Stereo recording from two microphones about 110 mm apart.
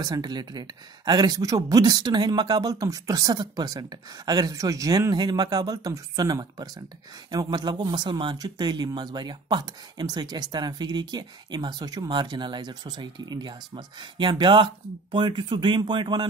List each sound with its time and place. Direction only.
0.0 s speech: 40° right (ahead or behind)